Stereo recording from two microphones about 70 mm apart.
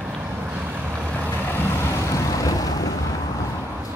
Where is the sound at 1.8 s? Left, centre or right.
Left.